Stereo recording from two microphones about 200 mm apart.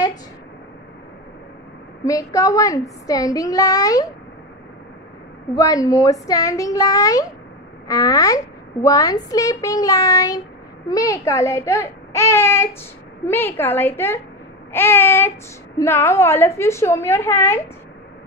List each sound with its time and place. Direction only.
2.0 s a woman's voice: 15° left (ahead or behind)
5.5 s a woman's voice: 20° left (ahead or behind)
14.7 s a sound: 10° left (ahead or behind)
15.8 s a woman's voice: 10° left (ahead or behind)